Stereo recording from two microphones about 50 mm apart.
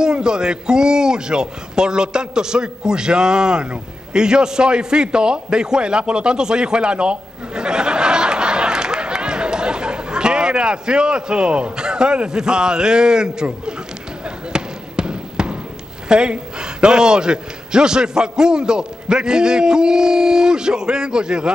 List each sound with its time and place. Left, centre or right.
0.0 s a man's voice: centre
14.2 s basketball bounce: centre
16.1 s a man's voice: centre